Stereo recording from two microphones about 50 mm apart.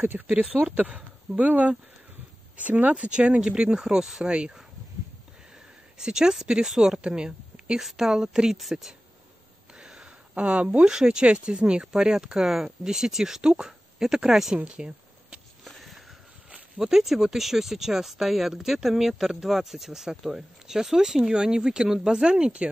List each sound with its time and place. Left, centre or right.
0.3 s speech: centre
0.7 s speech: right
5.9 s speech: centre
9.8 s a sound: centre
10.9 s speech: centre
14.6 s speech: right
16.7 s speech: centre